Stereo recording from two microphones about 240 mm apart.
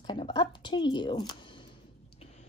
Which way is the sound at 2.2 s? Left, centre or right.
Left.